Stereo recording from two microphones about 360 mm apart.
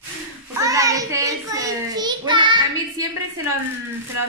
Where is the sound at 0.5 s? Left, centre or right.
Centre.